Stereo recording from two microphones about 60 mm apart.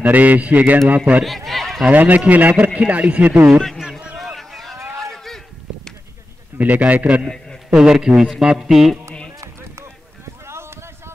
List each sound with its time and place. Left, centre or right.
0.0 s a man's voice: right
1.2 s speech: centre
1.9 s a man's voice: right
3.6 s a sound: centre
6.6 s a man's voice: right
7.7 s a man's voice: centre
10.4 s a sound: right